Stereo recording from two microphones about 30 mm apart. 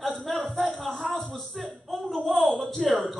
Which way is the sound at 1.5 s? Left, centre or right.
Centre.